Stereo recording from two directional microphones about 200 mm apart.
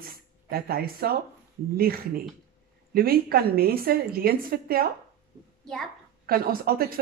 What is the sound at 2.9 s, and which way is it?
Speech, 50° right (ahead or behind).